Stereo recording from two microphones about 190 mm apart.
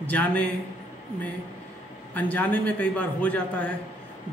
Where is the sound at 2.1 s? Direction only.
10° left (ahead or behind).